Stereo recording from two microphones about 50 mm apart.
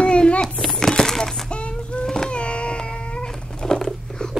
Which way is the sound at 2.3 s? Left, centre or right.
Left.